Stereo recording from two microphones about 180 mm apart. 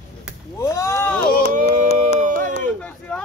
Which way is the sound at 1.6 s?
45° right (ahead or behind).